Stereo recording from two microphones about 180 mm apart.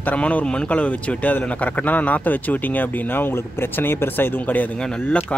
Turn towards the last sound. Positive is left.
turn(degrees=5)  # may be behind; listen again after turning